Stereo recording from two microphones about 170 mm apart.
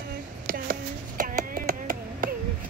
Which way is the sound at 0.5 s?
55° right (ahead or behind).